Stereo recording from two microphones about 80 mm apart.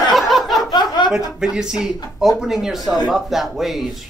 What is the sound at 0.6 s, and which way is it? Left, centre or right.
Chuckle, left.